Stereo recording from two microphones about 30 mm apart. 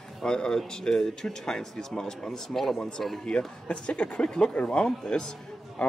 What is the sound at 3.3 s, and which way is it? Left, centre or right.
A man's voice, left.